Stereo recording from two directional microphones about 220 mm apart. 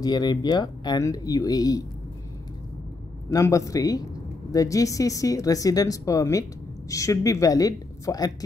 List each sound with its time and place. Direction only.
0.0 s speech: 20° left (ahead or behind)
3.3 s speech: 15° left (ahead or behind)